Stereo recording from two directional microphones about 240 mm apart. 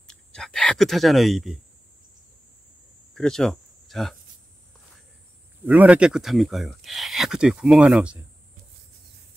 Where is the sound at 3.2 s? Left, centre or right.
Centre.